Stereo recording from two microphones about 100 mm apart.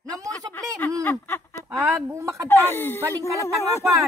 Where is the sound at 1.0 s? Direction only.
20° left (ahead or behind).